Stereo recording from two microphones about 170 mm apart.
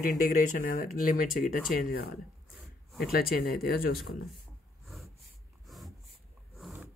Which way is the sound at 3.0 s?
60° left (ahead or behind).